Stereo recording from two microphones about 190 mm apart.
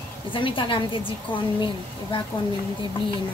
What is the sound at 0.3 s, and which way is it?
Speech, 25° left (ahead or behind).